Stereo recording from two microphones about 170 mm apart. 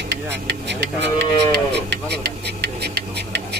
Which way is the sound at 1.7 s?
75° right (ahead or behind).